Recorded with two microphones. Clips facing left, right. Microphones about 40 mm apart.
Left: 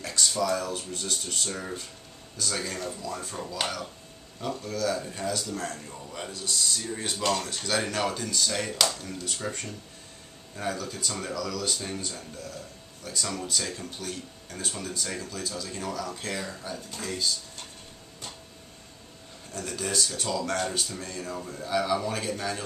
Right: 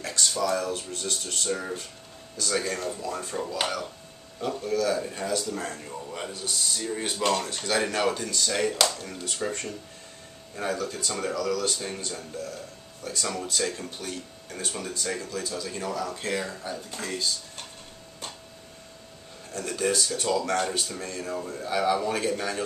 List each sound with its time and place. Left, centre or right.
0.0 s speech: centre
13.0 s speech: centre
19.5 s speech: centre